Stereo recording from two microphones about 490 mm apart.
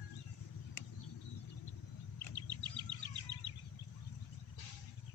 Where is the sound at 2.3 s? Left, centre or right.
Left.